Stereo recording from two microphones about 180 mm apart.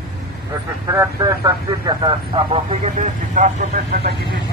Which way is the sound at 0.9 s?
15° right (ahead or behind).